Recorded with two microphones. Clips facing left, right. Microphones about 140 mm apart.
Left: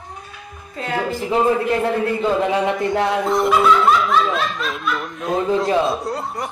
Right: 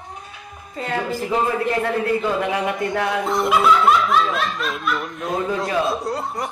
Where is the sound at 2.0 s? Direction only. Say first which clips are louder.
Left 2 dB; 25° left (ahead or behind).